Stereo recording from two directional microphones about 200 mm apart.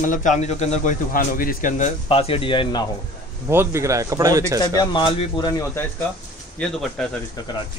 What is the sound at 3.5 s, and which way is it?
Speech, 15° right (ahead or behind).